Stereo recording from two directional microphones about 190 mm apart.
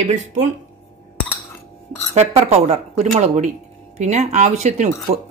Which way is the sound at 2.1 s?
35° right (ahead or behind).